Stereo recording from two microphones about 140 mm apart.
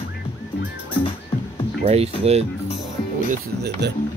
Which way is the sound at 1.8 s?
45° right (ahead or behind).